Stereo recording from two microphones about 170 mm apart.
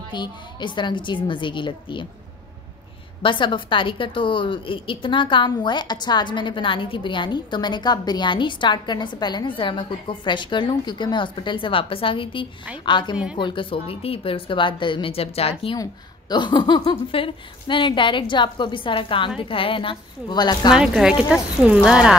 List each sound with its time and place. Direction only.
0.1 s a woman's voice: 25° left (ahead or behind)
3.2 s a woman's voice: 30° left (ahead or behind)
20.7 s speech: 5° right (ahead or behind)